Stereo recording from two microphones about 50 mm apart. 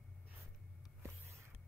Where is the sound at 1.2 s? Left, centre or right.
Right.